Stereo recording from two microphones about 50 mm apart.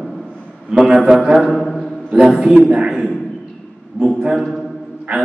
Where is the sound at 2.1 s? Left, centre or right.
Centre.